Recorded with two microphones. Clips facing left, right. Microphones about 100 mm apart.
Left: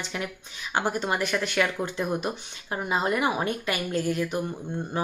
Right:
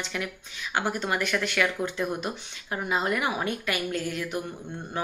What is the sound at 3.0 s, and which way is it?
Speech, 30° left (ahead or behind).